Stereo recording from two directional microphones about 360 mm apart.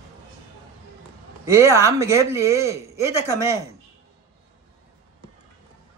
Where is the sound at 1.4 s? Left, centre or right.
Centre.